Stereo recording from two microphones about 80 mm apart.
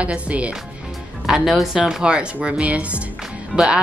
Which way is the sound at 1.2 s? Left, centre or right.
Centre.